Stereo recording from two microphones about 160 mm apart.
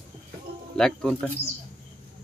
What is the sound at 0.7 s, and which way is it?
Speech, 5° left (ahead or behind).